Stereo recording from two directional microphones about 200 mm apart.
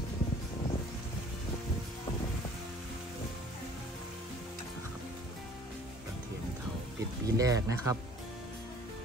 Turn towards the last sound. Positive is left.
turn(degrees=-15)  # may be behind; listen again after turning